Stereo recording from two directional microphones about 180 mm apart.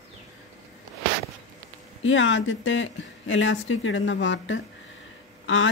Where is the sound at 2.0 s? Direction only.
90° left.